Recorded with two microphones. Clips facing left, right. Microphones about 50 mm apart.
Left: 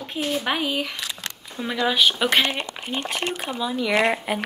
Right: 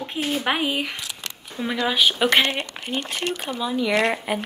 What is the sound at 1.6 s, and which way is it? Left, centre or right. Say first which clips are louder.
Speech: even; centre.